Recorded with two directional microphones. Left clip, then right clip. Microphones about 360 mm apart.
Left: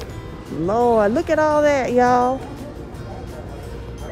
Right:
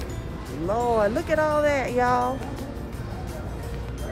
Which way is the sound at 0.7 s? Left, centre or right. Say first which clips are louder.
Left 6 dB; left.